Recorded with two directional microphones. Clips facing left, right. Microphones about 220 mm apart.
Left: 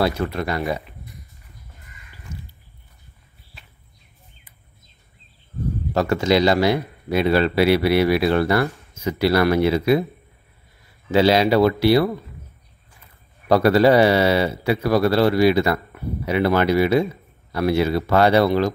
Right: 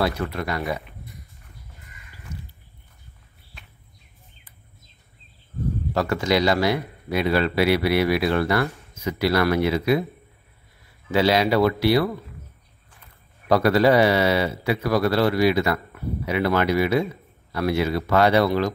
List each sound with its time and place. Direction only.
0.0 s speech: 30° left (ahead or behind)
5.9 s speech: 25° left (ahead or behind)
11.1 s speech: 30° left (ahead or behind)
13.5 s speech: 30° left (ahead or behind)